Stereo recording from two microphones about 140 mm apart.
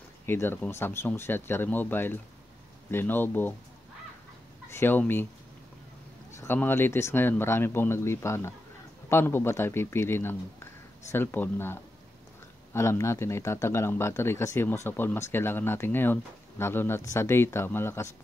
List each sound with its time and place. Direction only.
0.3 s speech: 15° left (ahead or behind)
4.6 s speech: 15° left (ahead or behind)
6.3 s speech: 15° left (ahead or behind)